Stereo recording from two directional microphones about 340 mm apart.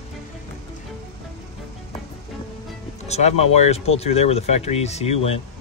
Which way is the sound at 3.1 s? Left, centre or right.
Centre.